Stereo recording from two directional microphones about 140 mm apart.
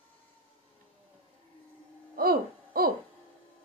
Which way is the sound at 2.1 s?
90° right.